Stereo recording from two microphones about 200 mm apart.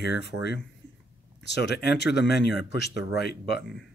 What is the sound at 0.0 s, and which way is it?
Speech, 55° left (ahead or behind).